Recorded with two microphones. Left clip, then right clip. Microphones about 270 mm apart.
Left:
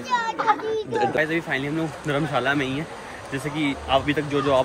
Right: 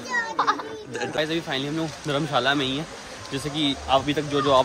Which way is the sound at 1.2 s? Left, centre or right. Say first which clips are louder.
Left 2 dB; centre.